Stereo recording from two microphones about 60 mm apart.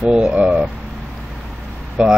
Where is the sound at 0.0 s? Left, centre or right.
Centre.